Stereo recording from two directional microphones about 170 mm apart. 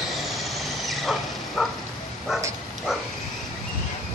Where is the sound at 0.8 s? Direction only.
Centre (ahead or behind).